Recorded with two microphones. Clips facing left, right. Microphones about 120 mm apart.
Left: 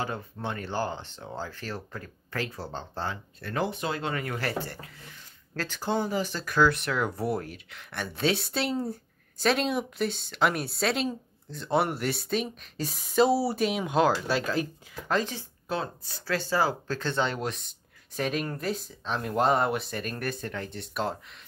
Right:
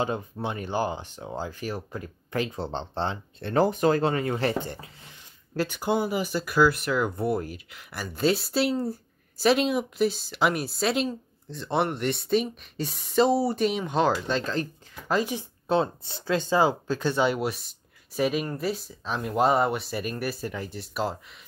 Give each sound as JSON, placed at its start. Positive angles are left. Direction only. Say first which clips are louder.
{"t": 0.0, "sound": "speech", "louder": "right 5 dB", "side_deg": -20}
{"t": 3.6, "sound": "speech", "louder": "right 9 dB", "side_deg": -45}
{"t": 4.1, "sound": "speech", "louder": "right 5 dB", "side_deg": -25}
{"t": 15.0, "sound": "speech", "louder": "right 2 dB", "side_deg": -5}
{"t": 15.3, "sound": "speech", "louder": "right 8 dB", "side_deg": -25}